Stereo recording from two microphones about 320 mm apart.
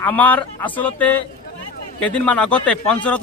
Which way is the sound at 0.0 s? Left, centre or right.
Centre.